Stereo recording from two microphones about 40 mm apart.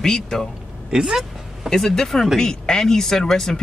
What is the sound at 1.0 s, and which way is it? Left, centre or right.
Speech, centre.